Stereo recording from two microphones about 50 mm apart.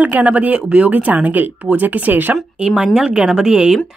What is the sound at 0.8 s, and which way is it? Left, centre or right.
Speech, right.